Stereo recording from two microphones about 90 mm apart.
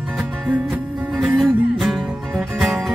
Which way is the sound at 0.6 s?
5° right (ahead or behind).